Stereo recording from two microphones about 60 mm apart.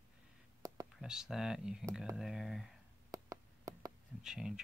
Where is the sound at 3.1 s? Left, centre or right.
Right.